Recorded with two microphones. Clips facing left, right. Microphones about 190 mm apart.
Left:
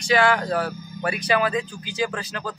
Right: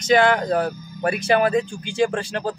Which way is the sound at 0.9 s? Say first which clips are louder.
Right 4 dB; 45° right (ahead or behind).